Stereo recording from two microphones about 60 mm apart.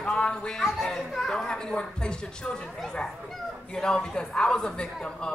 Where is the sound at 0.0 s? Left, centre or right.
Centre.